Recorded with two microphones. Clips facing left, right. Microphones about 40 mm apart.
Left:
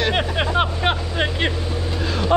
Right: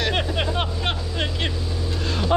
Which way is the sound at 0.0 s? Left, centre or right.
Centre.